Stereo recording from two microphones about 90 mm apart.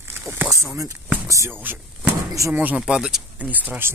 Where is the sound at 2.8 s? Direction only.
5° right (ahead or behind).